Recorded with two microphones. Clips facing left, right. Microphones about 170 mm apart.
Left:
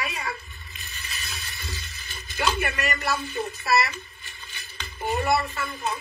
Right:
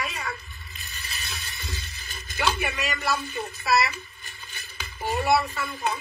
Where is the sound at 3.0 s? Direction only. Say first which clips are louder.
Left 1 dB; centre (ahead or behind).